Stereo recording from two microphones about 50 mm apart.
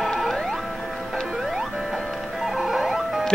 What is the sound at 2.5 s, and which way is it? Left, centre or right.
Music, centre.